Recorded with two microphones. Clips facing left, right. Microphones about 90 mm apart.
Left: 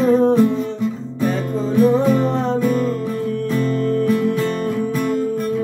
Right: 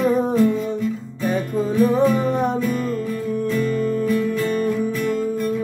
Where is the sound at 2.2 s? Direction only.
10° right (ahead or behind).